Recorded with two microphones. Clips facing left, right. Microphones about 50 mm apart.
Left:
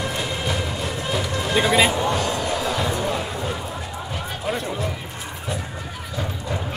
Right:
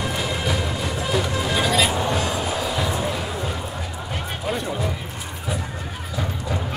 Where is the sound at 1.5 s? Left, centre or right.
Centre.